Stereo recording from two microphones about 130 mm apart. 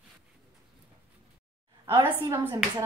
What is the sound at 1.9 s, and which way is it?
Speech, 30° right (ahead or behind).